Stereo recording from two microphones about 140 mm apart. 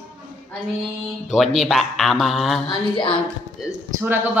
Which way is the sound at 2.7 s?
35° left (ahead or behind).